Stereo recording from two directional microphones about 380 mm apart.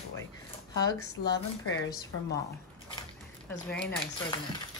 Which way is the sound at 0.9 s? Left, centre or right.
Left.